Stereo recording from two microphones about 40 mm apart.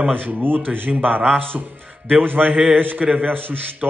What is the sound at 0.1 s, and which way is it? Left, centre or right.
A man's voice, right.